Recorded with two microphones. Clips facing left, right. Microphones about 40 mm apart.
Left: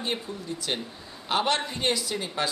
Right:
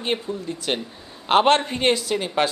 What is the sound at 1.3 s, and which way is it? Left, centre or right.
A man's voice, right.